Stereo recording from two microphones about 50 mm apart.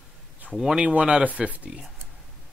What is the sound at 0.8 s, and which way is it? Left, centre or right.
Speech, right.